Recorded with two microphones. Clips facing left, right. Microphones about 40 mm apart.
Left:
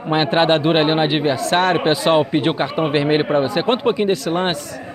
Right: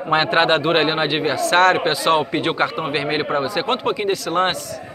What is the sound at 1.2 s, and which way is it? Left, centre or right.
A man's voice, centre.